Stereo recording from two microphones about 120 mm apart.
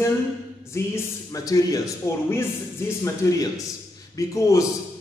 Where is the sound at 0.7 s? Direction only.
25° left (ahead or behind).